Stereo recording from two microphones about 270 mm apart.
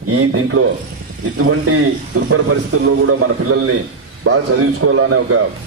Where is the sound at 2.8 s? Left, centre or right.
Right.